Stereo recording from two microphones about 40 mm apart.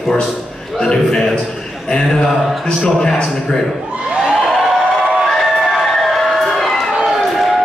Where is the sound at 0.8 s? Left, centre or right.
Centre.